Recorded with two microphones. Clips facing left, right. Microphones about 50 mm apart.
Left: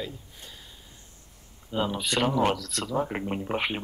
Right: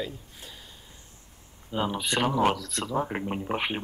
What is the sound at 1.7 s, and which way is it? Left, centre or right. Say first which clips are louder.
Speech: even; centre.